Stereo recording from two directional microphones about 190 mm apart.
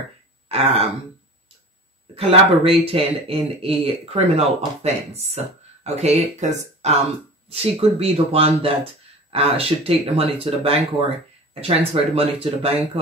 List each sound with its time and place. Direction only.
0.5 s throat clearing: 30° right (ahead or behind)
2.1 s speech: 30° right (ahead or behind)